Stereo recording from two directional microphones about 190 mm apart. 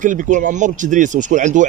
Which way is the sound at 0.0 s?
40° right (ahead or behind).